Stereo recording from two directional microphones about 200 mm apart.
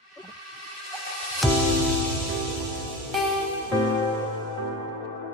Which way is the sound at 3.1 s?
Centre (ahead or behind).